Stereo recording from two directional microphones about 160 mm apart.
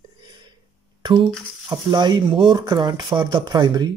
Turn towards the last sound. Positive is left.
turn(degrees=-25)  # may be behind; listen again after turning